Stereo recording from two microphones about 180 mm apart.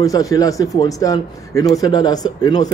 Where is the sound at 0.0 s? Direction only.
20° left (ahead or behind).